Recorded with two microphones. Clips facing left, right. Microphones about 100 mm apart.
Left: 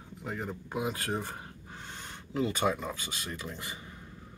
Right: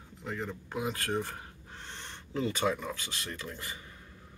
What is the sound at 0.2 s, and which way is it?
Speech, 10° left (ahead or behind).